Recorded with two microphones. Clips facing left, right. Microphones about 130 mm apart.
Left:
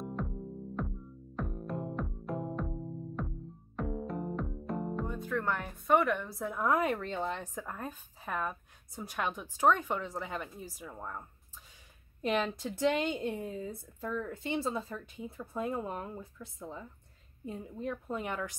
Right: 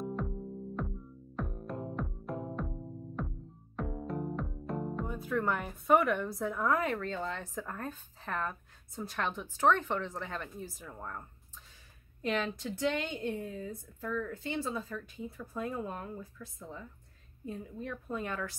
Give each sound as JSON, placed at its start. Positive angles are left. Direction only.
{"t": 0.0, "sound": "music", "side_deg": 0}
{"t": 6.6, "sound": "speech", "side_deg": 15}
{"t": 12.6, "sound": "speech", "side_deg": 30}